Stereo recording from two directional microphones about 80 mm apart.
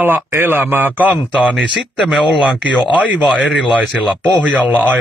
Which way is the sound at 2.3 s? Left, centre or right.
Centre.